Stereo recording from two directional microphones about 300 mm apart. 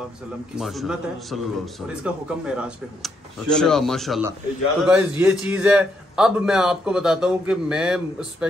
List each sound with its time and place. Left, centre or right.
0.6 s a man's voice: centre